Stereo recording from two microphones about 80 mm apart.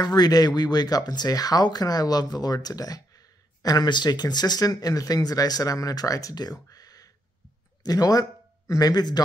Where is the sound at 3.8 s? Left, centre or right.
Left.